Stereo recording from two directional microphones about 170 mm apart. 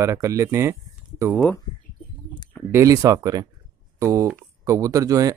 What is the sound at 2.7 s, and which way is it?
Speech, 20° right (ahead or behind).